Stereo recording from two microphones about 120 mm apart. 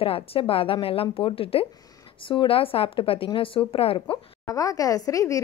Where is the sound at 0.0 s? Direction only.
50° left (ahead or behind).